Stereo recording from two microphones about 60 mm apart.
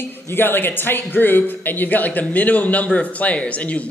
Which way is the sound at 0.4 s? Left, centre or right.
Left.